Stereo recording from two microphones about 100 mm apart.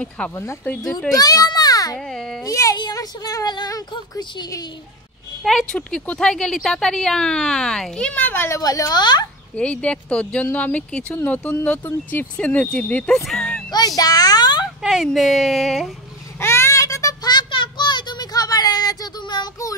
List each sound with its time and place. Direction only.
0.2 s speech: 10° left (ahead or behind)
0.9 s a child's voice: 40° left (ahead or behind)
2.0 s baby cry: 5° left (ahead or behind)
2.4 s a sound: 35° left (ahead or behind)
2.8 s a woman's voice: 40° left (ahead or behind)
5.4 s speech: 5° left (ahead or behind); by 8.5 s 20° left (ahead or behind)
8.5 s speech: 35° left (ahead or behind)
9.6 s speech: 10° left (ahead or behind)
13.7 s a sound: 40° left (ahead or behind)
14.8 s speech: 5° right (ahead or behind)
16.3 s child singing: 25° left (ahead or behind); by 19.5 s 45° left (ahead or behind)